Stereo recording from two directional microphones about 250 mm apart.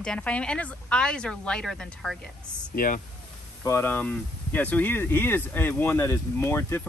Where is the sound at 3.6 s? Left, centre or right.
Centre.